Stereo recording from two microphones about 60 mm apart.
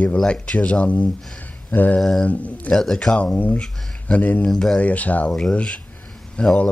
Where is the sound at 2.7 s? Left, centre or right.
Centre.